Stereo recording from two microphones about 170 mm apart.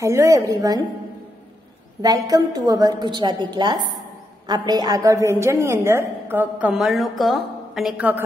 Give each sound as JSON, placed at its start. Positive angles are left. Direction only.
{"t": 0.0, "sound": "a woman's voice", "side_deg": -20}
{"t": 2.0, "sound": "a woman's voice", "side_deg": -20}